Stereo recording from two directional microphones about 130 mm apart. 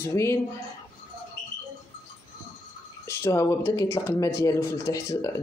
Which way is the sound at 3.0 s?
20° left (ahead or behind).